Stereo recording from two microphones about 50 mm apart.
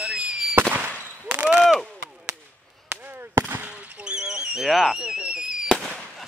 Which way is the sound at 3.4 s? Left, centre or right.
Right.